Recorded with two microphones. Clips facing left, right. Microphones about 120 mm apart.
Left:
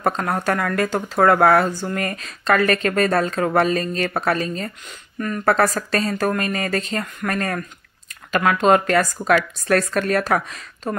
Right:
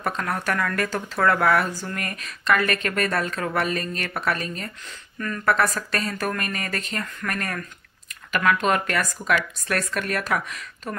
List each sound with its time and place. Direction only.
0.0 s speech: 30° left (ahead or behind)